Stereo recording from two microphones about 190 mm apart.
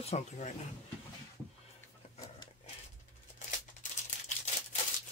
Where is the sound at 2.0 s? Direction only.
35° left (ahead or behind).